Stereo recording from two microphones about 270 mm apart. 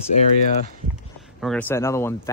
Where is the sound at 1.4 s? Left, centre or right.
Centre.